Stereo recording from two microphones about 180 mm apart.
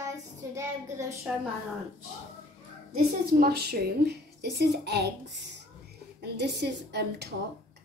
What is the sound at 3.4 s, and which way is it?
A woman's voice, 60° right (ahead or behind).